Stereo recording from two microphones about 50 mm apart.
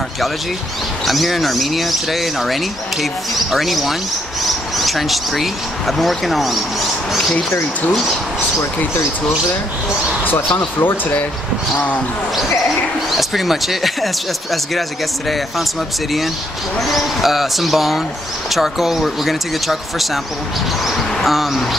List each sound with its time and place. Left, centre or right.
1.0 s speech: centre
10.2 s speech: left
13.1 s speech: centre
16.8 s speech: centre